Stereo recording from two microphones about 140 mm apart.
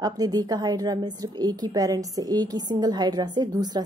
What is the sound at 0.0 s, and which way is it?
A woman's voice, 25° right (ahead or behind).